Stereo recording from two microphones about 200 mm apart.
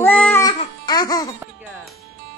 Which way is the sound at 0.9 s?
20° left (ahead or behind).